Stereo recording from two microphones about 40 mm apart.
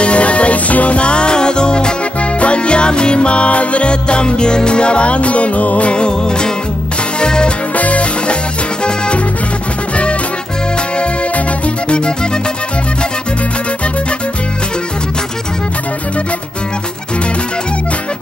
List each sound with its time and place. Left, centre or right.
0.0 s music: left
7.7 s music: left
11.0 s music: left